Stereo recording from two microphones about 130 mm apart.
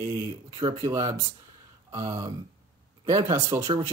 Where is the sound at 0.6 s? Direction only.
35° right (ahead or behind).